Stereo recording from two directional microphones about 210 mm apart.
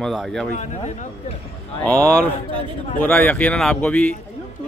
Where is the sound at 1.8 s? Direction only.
5° left (ahead or behind).